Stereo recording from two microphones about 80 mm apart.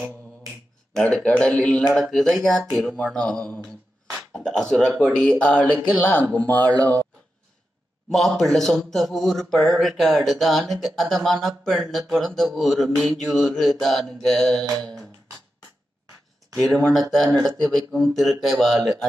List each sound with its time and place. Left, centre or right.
1.1 s a man's voice: centre
2.0 s speech: centre
3.0 s a sound: centre
4.5 s a man's voice: centre
5.9 s speech: centre
6.3 s speech: left
8.1 s speech: centre
16.7 s speech: centre